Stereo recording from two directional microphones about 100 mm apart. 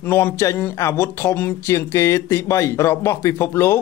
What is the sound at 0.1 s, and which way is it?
Speech, 25° left (ahead or behind).